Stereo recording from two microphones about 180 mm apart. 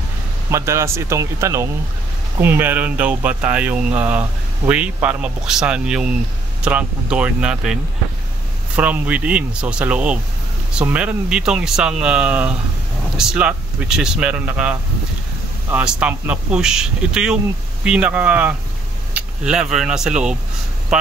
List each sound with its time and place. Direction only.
0.5 s speech: 15° right (ahead or behind)